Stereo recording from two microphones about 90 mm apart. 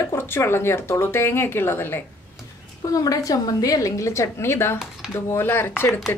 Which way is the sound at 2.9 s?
40° left (ahead or behind).